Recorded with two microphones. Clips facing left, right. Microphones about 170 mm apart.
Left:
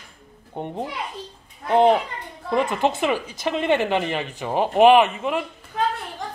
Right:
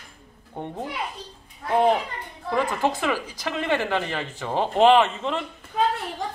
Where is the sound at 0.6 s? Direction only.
20° left (ahead or behind).